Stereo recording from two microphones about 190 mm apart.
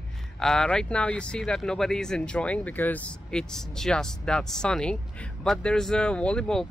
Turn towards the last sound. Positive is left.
turn(degrees=5)  # may be behind; listen again after turning